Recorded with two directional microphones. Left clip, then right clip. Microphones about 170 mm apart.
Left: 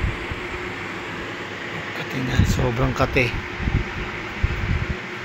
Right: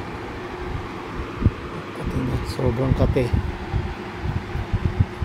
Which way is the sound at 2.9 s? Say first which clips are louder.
Left 3 dB; 15° right (ahead or behind).